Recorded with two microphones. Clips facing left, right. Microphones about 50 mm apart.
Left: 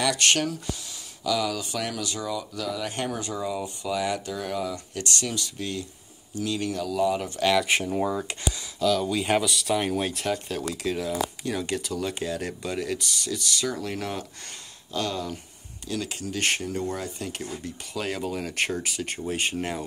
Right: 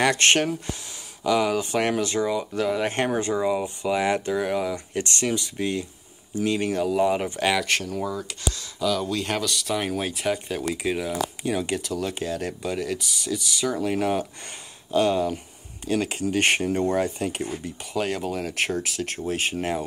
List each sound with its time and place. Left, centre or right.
0.0 s speech: right
4.4 s speech: right
7.6 s speech: centre
8.7 s speech: centre
9.1 s speech: centre
10.3 s speech: centre
18.0 s speech: centre